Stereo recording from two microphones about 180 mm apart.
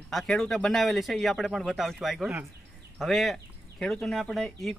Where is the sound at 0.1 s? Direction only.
Centre (ahead or behind).